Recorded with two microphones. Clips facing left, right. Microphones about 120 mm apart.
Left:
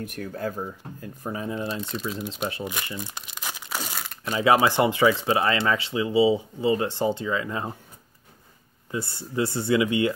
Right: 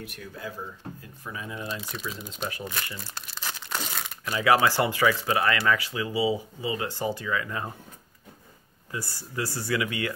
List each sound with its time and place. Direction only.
0.0 s speech: 45° left (ahead or behind); by 1.8 s 30° left (ahead or behind)
1.8 s speech: centre (ahead or behind)
2.6 s crumpling: 15° left (ahead or behind)
4.3 s speech: 25° left (ahead or behind)
8.9 s speech: 25° left (ahead or behind)